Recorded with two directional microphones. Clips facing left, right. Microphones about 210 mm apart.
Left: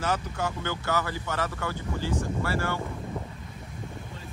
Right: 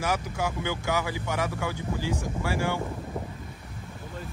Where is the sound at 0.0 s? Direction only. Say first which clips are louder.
Right 1 dB; 10° right (ahead or behind).